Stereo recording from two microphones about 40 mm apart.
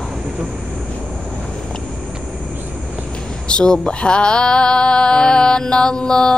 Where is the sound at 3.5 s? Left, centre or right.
Left.